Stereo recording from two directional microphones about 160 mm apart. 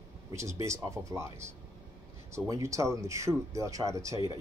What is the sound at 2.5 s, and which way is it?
Speech, 20° right (ahead or behind).